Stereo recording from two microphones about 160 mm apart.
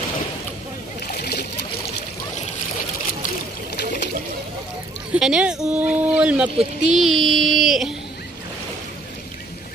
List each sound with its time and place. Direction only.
1.0 s splash: 75° left (ahead or behind)
5.1 s speech: 5° right (ahead or behind)